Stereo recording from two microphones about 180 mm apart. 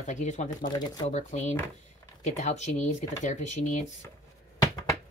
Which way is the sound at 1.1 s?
40° left (ahead or behind).